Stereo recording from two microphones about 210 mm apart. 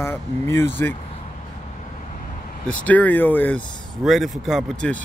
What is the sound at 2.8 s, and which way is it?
Speech, 10° left (ahead or behind).